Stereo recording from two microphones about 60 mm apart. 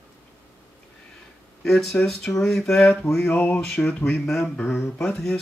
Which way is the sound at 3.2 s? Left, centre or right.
Left.